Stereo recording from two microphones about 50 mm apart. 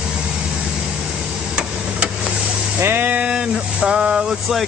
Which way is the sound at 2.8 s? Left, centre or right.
Right.